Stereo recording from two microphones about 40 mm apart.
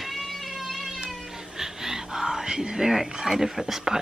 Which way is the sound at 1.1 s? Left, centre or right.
Centre.